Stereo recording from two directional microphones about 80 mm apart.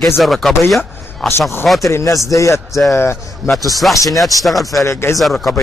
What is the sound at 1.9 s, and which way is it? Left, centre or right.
Speech, left.